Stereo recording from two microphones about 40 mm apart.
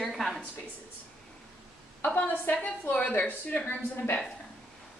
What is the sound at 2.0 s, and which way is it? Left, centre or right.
A woman's voice, left.